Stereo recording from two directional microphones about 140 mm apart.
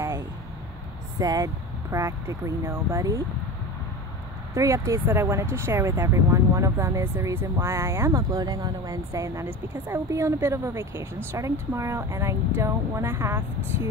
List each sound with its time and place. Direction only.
1.2 s speech: 25° right (ahead or behind)
4.6 s speech: 20° right (ahead or behind)